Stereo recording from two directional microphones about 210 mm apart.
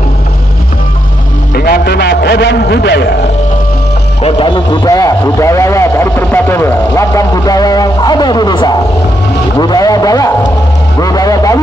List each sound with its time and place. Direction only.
1.5 s a sound: 45° left (ahead or behind)
4.2 s a man's voice: 25° left (ahead or behind)
11.0 s vehicle: 15° left (ahead or behind)